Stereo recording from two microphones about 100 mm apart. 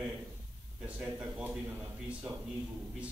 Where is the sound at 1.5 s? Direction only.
20° right (ahead or behind).